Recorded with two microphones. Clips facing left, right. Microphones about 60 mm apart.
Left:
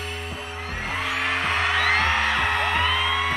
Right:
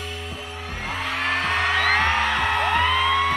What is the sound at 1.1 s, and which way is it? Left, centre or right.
Music, centre.